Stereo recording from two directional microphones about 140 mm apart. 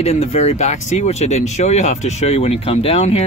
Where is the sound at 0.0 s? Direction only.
50° left (ahead or behind).